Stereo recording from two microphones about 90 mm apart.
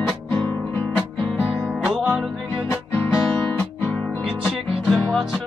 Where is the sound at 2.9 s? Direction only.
25° left (ahead or behind).